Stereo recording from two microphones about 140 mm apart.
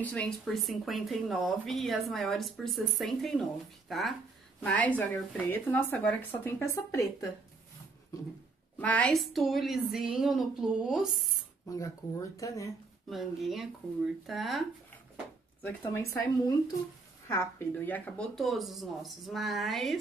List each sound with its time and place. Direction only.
0.0 s speech: 10° left (ahead or behind)
8.7 s speech: 10° left (ahead or behind); by 11.1 s 5° right (ahead or behind)
12.4 s speech: 20° left (ahead or behind)
13.1 s speech: centre (ahead or behind)
15.6 s speech: 15° left (ahead or behind); by 20.0 s centre (ahead or behind)